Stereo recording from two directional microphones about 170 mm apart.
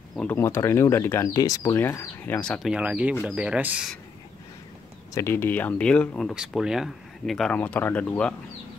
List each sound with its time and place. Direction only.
0.1 s speech: 5° left (ahead or behind)
2.7 s speech: 5° right (ahead or behind)
5.1 s speech: 15° left (ahead or behind)